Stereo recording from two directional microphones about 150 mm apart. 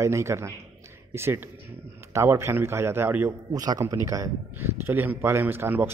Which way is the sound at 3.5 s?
25° right (ahead or behind).